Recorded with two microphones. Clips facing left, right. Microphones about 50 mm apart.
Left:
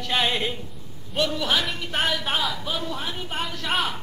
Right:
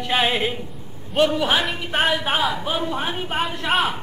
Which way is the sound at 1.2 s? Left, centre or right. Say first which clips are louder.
Right 5 dB; right.